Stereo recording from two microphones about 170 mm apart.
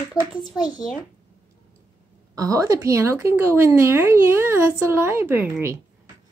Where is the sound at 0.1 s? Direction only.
25° left (ahead or behind).